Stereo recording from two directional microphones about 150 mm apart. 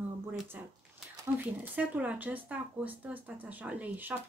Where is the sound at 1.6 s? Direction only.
10° right (ahead or behind).